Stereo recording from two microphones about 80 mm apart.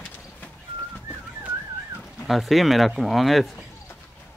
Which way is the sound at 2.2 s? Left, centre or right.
Centre.